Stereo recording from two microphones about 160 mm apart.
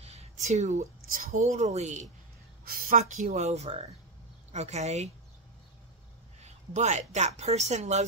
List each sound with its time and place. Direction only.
0.0 s a woman's voice: 40° right (ahead or behind)
2.6 s a sound: 65° right (ahead or behind)
3.0 s speech: 45° right (ahead or behind)
6.7 s speech: 45° right (ahead or behind)